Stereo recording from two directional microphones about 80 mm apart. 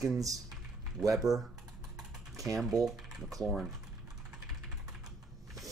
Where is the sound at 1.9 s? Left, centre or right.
Right.